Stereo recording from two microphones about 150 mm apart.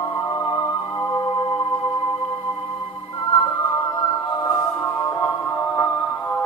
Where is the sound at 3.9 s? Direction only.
25° left (ahead or behind).